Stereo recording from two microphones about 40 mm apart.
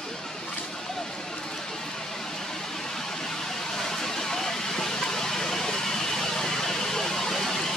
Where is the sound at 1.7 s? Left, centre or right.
Centre.